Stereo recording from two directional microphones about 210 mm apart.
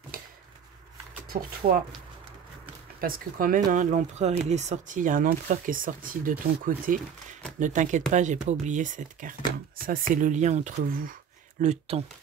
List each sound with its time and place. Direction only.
0.1 s a sound: 45° right (ahead or behind)
1.6 s speech: 40° right (ahead or behind)
3.0 s speech: 40° right (ahead or behind)